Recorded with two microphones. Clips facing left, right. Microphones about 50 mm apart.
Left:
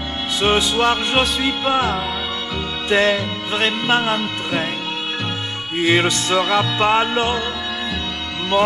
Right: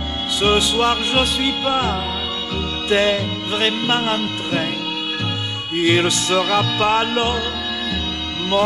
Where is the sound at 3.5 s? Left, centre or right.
Centre.